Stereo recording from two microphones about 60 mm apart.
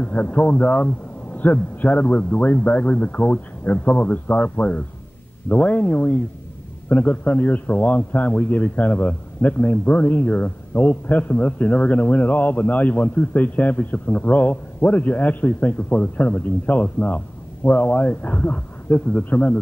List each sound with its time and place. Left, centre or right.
0.0 s a man's voice: left